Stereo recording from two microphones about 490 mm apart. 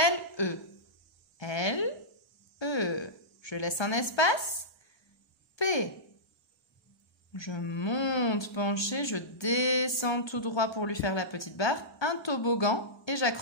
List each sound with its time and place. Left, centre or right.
0.0 s a sound: left
5.6 s speech: left
7.3 s speech: left